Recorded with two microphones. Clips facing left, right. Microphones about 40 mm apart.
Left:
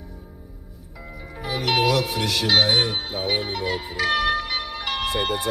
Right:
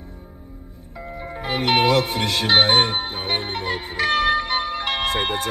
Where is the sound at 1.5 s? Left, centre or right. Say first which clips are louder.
Right 3 dB; right.